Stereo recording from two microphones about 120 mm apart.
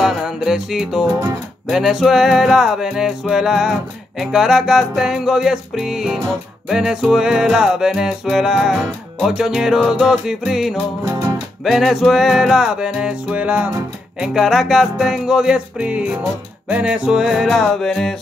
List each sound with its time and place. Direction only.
0.0 s music: 5° right (ahead or behind)
11.1 s music: 30° right (ahead or behind)
11.6 s music: centre (ahead or behind)